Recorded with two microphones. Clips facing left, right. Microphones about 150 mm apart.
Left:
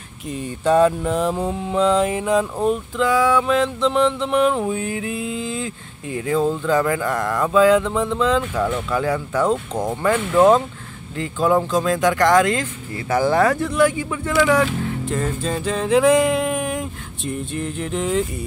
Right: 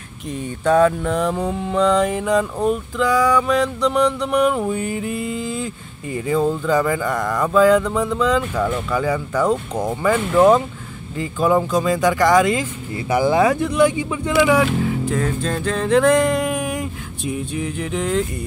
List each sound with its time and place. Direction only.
0.3 s mantra: 5° left (ahead or behind)
13.1 s mantra: 15° right (ahead or behind); by 18.3 s centre (ahead or behind)